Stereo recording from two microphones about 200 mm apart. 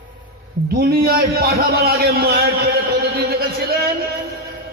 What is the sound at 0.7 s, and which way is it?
A man's voice, 50° right (ahead or behind).